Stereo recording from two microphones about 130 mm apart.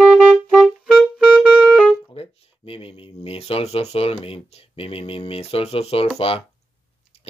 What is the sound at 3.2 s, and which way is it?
Speech, 50° left (ahead or behind).